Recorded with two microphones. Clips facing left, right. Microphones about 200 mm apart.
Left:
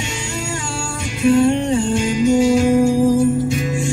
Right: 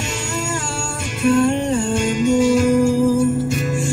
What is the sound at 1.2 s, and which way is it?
Music, centre (ahead or behind).